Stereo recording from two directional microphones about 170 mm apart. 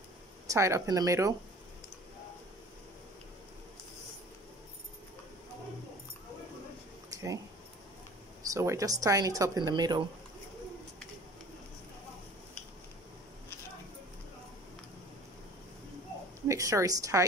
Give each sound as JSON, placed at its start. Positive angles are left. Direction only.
{"t": 0.5, "sound": "speech", "side_deg": -15}
{"t": 7.1, "sound": "a sound", "side_deg": -20}
{"t": 8.5, "sound": "speech", "side_deg": -20}
{"t": 16.4, "sound": "speech", "side_deg": -20}